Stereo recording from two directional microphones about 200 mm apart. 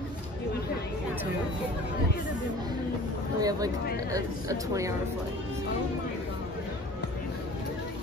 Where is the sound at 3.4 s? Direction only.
15° right (ahead or behind).